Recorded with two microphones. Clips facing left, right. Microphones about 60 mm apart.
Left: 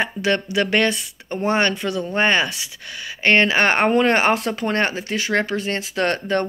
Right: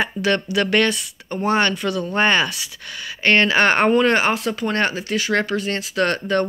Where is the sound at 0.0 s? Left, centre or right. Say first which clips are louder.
Even; centre.